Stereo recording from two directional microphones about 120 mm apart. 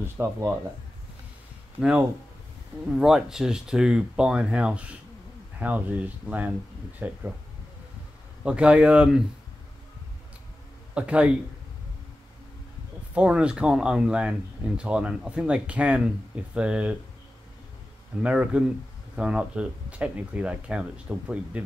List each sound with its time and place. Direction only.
0.0 s speech: 20° right (ahead or behind)
1.8 s speech: 10° right (ahead or behind)
8.5 s speech: 10° right (ahead or behind)
11.0 s speech: 10° right (ahead or behind)
13.1 s speech: 10° right (ahead or behind)
18.2 s speech: 10° right (ahead or behind)